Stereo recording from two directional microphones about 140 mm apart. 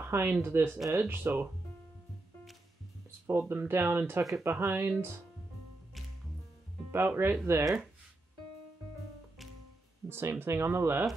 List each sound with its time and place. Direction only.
0.0 s speech: 15° right (ahead or behind)
3.3 s speech: 15° right (ahead or behind)
6.9 s speech: 15° right (ahead or behind)
10.0 s speech: 15° right (ahead or behind)